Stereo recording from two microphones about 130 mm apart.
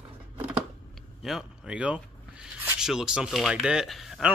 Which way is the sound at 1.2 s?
Centre (ahead or behind).